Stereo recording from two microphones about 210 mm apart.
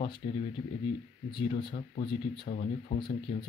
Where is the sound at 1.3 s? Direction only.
25° left (ahead or behind).